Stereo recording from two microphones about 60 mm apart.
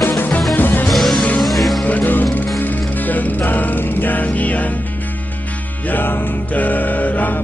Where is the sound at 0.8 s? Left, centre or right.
Centre.